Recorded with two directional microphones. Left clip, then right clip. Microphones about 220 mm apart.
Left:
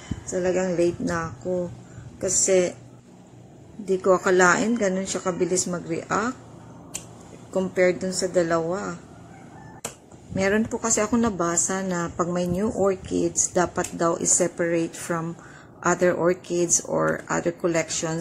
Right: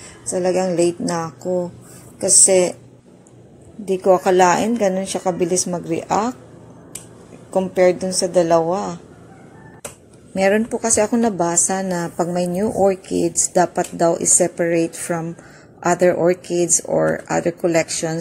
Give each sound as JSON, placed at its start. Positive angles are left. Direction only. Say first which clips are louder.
{"t": 0.3, "sound": "a woman's voice", "louder": "right 5 dB", "side_deg": -15}
{"t": 3.8, "sound": "a woman's voice", "louder": "right 5 dB", "side_deg": -5}
{"t": 7.5, "sound": "a woman's voice", "louder": "right 6 dB", "side_deg": -10}
{"t": 10.3, "sound": "a woman's voice", "louder": "right 6 dB", "side_deg": -10}